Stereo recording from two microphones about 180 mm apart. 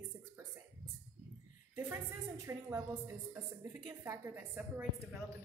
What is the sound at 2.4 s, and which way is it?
A woman's voice, 15° right (ahead or behind).